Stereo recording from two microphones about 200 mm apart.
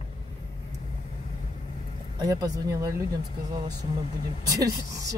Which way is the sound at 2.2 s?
20° right (ahead or behind).